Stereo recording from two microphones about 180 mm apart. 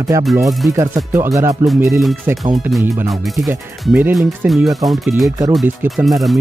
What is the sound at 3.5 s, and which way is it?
Speech, 10° right (ahead or behind).